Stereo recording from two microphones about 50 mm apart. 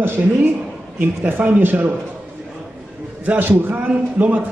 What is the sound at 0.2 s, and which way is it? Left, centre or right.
Speech, right.